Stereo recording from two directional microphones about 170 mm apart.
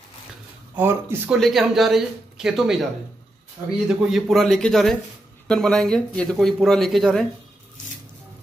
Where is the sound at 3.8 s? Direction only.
Centre (ahead or behind).